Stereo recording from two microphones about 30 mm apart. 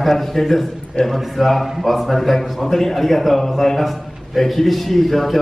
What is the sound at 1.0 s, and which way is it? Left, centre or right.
Speech, left.